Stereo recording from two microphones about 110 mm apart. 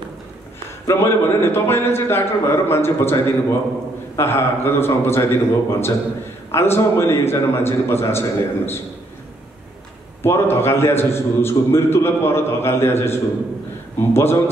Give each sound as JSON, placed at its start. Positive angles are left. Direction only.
{"t": 0.8, "sound": "a man's voice", "side_deg": 25}
{"t": 10.2, "sound": "a man's voice", "side_deg": 25}